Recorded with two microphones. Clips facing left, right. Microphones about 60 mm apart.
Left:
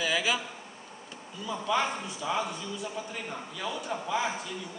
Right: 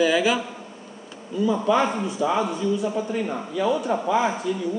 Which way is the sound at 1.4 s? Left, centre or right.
Right.